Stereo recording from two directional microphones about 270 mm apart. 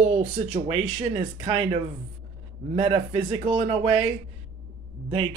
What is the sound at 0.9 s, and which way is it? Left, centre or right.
Speech, centre.